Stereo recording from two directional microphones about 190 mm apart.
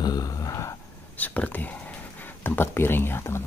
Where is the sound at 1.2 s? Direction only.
10° left (ahead or behind).